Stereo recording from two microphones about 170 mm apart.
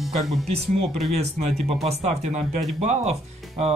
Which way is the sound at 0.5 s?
40° right (ahead or behind).